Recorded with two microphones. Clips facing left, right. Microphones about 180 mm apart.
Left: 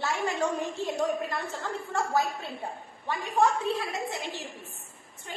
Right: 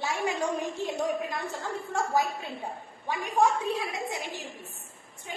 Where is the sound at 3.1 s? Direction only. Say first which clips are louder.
Even; 15° right (ahead or behind).